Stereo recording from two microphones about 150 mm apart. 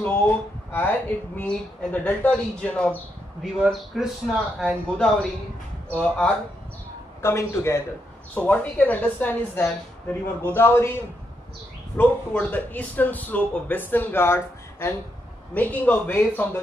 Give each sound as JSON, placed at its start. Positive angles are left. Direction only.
{"t": 0.7, "sound": "a man's voice", "side_deg": 15}